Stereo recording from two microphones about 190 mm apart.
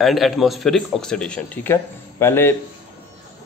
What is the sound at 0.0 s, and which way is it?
A man's voice, centre (ahead or behind).